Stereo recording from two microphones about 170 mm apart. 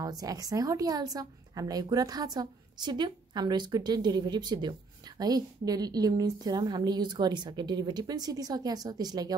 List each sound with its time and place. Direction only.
0.2 s a woman's voice: 20° right (ahead or behind)